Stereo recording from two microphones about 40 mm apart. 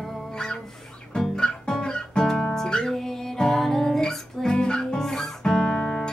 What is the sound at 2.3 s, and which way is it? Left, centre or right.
Music, centre.